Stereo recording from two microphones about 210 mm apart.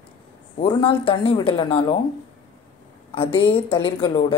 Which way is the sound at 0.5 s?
25° left (ahead or behind).